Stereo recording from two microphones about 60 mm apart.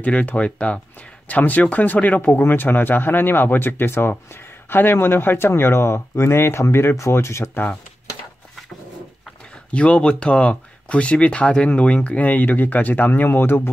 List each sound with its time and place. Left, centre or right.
0.0 s speech: left
9.7 s speech: left